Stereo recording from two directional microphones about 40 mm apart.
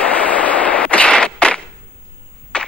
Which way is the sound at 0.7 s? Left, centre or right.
Left.